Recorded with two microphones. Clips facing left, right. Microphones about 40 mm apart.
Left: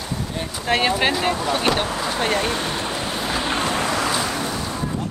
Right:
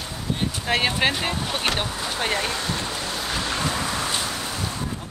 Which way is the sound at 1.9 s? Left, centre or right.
Centre.